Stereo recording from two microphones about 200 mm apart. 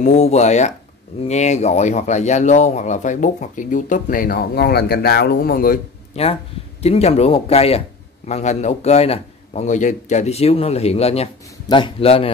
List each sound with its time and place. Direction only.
0.0 s speech: 35° left (ahead or behind)
6.8 s a man's voice: 30° left (ahead or behind)